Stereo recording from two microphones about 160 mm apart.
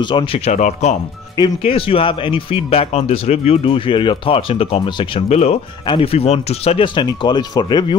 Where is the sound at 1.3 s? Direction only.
25° left (ahead or behind).